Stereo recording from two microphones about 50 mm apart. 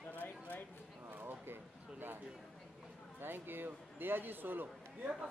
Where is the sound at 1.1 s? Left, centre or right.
Right.